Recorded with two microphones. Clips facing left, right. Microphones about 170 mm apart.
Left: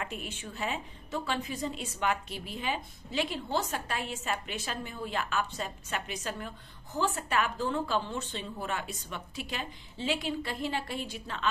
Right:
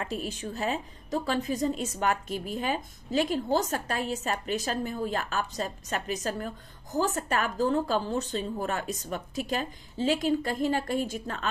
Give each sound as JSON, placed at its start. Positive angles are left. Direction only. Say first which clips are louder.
{"t": 0.0, "sound": "a woman's voice", "louder": "right 5 dB", "side_deg": -35}